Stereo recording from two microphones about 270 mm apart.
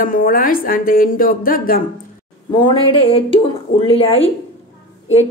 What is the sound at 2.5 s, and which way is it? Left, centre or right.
A woman's voice, centre.